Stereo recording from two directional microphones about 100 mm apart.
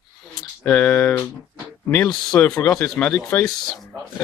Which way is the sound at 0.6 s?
15° left (ahead or behind).